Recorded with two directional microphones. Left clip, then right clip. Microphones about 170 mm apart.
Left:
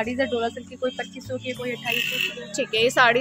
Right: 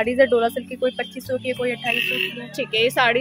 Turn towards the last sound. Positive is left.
turn(degrees=0)  # may be behind; listen again after turning